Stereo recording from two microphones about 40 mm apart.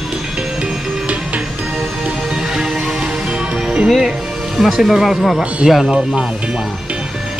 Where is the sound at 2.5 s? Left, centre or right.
Centre.